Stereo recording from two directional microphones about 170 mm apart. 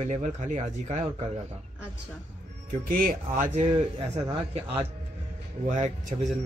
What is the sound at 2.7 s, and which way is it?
Speech, 55° right (ahead or behind).